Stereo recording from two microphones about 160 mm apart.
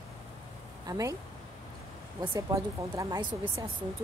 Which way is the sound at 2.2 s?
20° right (ahead or behind).